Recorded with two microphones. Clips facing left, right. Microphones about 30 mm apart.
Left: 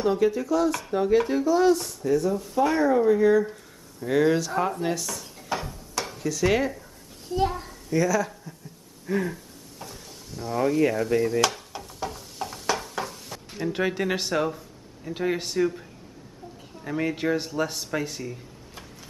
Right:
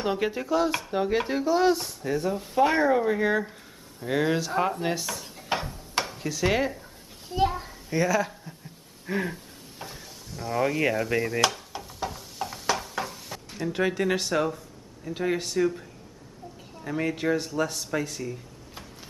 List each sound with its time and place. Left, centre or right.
0.0 s speech: right
4.0 s speech: centre
5.0 s dishes: right
6.0 s stir: centre
7.2 s a child's voice: centre
7.9 s speech: right
9.0 s a sound: right
10.3 s speech: centre
11.4 s a sound: centre
13.6 s speech: centre
16.8 s speech: centre